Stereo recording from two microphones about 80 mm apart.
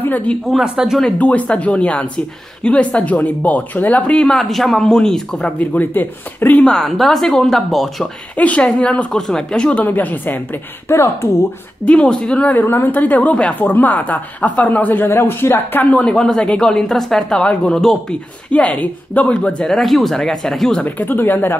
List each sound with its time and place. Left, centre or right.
0.5 s speech: centre
1.0 s a woman's voice: centre
5.6 s a woman's voice: left
6.6 s speech: centre
8.4 s a woman's voice: centre; by 11.2 s left
11.8 s a woman's voice: centre
16.1 s a woman's voice: centre
18.5 s a woman's voice: centre
19.7 s speech: centre
20.8 s a woman's voice: left